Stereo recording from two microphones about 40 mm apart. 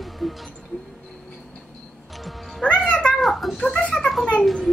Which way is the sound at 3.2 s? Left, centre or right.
Centre.